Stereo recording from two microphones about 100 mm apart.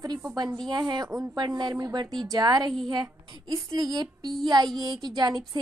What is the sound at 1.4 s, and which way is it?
A child's voice, 45° right (ahead or behind).